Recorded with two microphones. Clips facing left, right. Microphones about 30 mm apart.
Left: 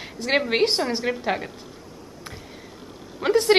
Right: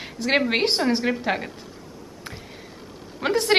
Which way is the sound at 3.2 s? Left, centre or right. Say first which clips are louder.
Left 2 dB; centre.